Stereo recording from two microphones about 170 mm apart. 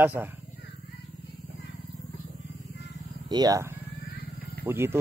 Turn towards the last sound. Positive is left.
turn(degrees=-15)  # may be behind; listen again after turning